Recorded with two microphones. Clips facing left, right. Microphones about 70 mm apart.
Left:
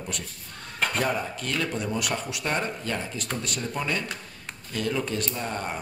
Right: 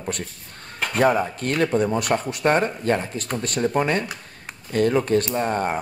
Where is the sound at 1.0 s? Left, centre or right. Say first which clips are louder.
Right 9 dB; right.